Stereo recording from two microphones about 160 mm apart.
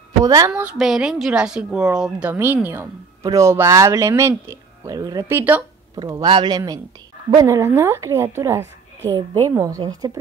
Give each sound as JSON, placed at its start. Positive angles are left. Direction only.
{"t": 0.2, "sound": "a woman's voice", "side_deg": -20}
{"t": 0.5, "sound": "a woman's voice", "side_deg": -10}